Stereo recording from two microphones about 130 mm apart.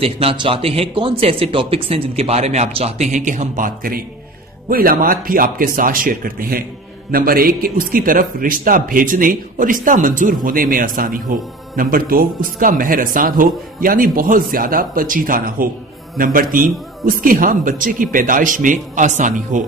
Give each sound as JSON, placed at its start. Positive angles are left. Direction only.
{"t": 0.0, "sound": "a man's voice", "side_deg": -45}
{"t": 7.4, "sound": "a man's voice", "side_deg": -90}